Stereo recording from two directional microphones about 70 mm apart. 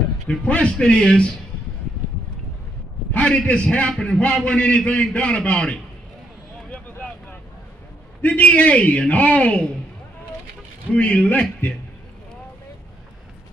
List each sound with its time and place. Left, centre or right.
0.3 s a man's voice: centre
3.1 s a man's voice: centre
8.2 s a man's voice: centre
10.9 s a man's voice: centre